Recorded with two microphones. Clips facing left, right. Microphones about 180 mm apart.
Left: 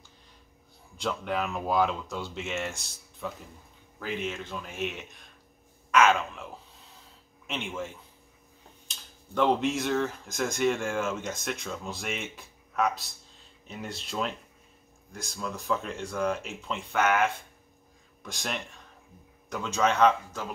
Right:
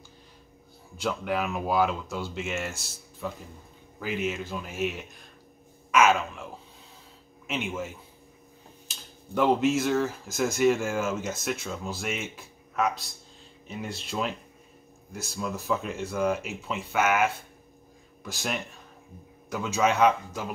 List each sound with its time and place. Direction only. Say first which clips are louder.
0.9 s speech: right 2 dB; 5° right (ahead or behind)